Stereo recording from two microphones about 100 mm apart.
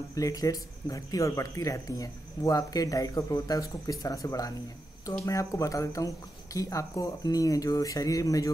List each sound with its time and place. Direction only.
0.1 s speech: 35° left (ahead or behind)